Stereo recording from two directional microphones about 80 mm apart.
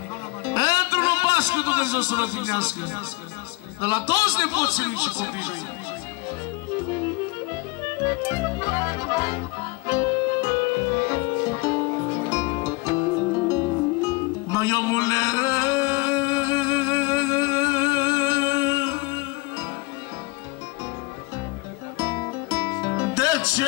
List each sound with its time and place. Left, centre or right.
0.5 s music: left
3.8 s a man's voice: left
8.0 s music: left
14.0 s music: left
21.9 s music: left